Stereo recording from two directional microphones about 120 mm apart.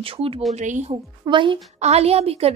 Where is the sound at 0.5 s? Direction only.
80° right.